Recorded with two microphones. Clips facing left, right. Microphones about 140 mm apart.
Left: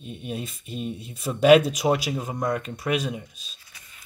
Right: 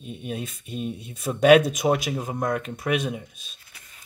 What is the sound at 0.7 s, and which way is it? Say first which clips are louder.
Speech: right 1 dB; centre (ahead or behind).